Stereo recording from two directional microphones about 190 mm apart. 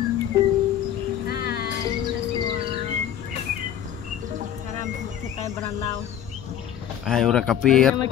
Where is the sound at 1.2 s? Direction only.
55° left (ahead or behind).